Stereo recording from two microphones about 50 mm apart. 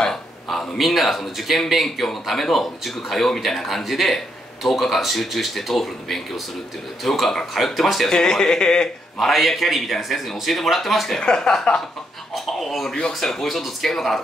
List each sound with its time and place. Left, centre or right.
0.0 s speech: centre
9.2 s speech: centre
11.1 s speech: centre